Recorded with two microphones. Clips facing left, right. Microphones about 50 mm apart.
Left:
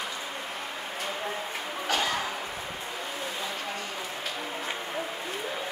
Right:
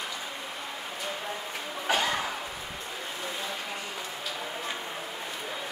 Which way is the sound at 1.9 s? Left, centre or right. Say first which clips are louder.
Right 1 dB; centre.